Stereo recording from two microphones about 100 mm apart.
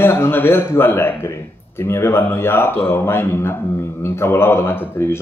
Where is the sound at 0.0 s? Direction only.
25° left (ahead or behind).